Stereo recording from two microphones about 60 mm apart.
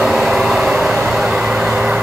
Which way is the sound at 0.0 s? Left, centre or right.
Centre.